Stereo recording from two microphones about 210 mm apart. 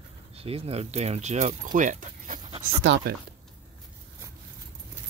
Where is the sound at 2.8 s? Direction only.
55° right (ahead or behind).